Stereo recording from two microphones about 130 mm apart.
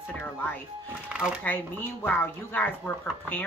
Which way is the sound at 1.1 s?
10° right (ahead or behind).